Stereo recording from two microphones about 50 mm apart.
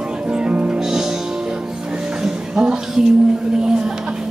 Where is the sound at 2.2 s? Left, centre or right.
Centre.